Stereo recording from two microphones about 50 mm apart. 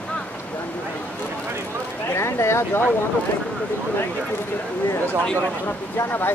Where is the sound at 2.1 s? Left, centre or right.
Left.